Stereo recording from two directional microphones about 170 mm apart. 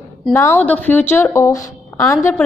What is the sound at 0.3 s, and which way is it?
A woman's voice, 15° left (ahead or behind).